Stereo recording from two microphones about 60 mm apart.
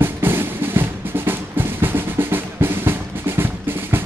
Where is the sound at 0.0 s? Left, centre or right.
Right.